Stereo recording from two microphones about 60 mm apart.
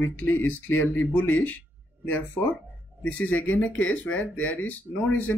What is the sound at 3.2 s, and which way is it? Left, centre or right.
Speech, left.